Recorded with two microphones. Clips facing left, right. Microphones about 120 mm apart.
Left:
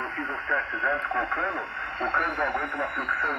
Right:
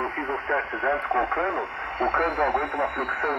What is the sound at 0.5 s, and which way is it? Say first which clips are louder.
Speech: right 3 dB; 40° right (ahead or behind).